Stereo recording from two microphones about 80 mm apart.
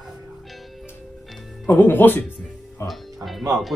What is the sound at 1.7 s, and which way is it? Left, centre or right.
Speech, left.